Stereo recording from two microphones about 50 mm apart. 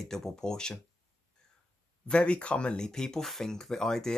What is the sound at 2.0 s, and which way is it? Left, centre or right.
Speech, left.